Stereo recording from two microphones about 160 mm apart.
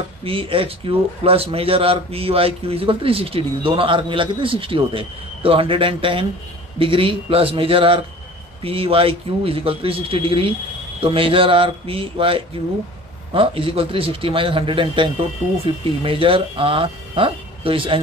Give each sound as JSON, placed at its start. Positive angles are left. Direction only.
{"t": 0.2, "sound": "a man's voice", "side_deg": -35}